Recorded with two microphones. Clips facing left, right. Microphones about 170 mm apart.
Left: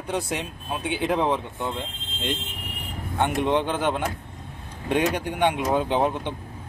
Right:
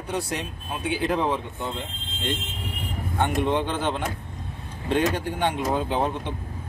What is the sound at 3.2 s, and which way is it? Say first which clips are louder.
Speech: left 1 dB; 15° left (ahead or behind).